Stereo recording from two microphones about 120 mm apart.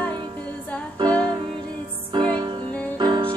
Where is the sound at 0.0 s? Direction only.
40° right (ahead or behind).